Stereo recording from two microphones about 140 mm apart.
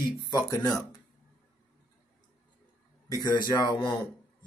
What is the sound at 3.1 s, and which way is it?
Speech, 30° left (ahead or behind).